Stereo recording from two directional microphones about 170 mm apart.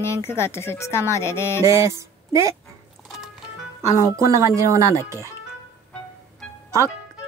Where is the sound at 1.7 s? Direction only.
15° right (ahead or behind).